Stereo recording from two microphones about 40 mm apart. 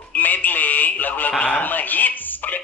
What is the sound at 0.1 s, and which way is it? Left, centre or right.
Telephone, left.